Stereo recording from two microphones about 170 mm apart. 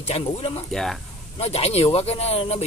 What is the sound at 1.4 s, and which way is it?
Speech, 35° left (ahead or behind).